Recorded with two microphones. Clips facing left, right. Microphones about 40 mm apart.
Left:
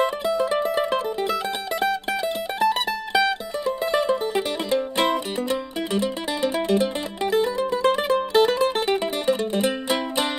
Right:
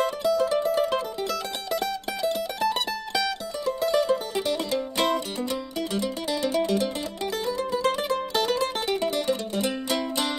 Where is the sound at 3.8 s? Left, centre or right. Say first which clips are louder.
Left 1 dB; centre.